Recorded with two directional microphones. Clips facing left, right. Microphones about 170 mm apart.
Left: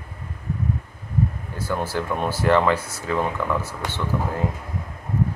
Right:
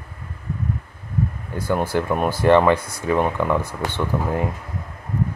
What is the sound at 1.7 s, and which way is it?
Speech, 15° right (ahead or behind).